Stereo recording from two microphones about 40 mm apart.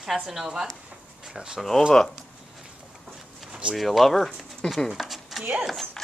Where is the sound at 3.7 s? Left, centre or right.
Centre.